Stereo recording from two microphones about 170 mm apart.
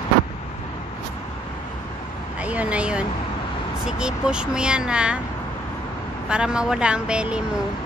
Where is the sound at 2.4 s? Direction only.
10° right (ahead or behind).